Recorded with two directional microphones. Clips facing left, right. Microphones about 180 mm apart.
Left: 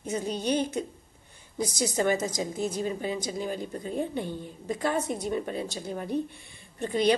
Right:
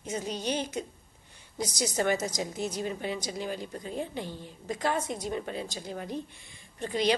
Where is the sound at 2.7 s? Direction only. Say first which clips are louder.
Left 3 dB; 50° left (ahead or behind).